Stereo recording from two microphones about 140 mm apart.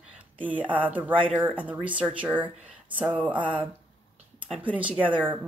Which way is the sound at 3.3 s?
35° right (ahead or behind).